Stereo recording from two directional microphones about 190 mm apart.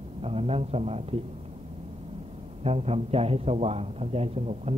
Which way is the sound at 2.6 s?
35° right (ahead or behind).